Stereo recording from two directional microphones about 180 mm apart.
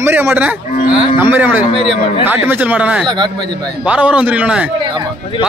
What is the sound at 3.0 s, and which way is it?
Speech, 25° right (ahead or behind).